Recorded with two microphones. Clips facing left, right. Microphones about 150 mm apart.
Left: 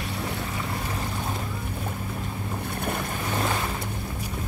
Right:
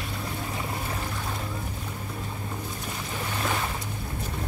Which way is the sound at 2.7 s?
60° left (ahead or behind).